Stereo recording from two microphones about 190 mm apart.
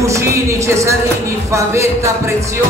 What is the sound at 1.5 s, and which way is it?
Speech, 15° right (ahead or behind).